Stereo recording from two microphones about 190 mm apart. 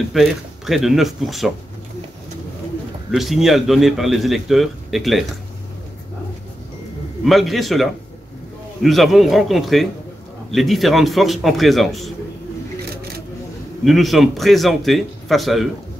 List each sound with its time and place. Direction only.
0.1 s a man's voice: centre (ahead or behind)
3.1 s a man's voice: centre (ahead or behind)
7.2 s a man's voice: centre (ahead or behind)
12.9 s a sound: 55° right (ahead or behind)
13.8 s a man's voice: centre (ahead or behind)